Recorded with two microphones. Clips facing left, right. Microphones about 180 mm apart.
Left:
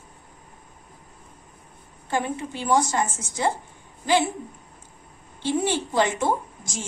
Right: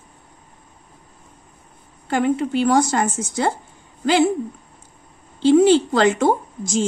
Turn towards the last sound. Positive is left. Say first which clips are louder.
# right 13 dB
turn(degrees=-85)